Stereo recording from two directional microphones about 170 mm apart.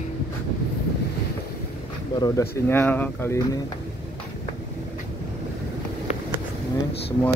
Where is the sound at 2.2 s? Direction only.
15° left (ahead or behind).